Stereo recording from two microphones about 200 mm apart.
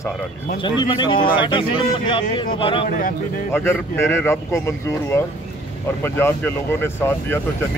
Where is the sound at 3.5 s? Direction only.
10° left (ahead or behind).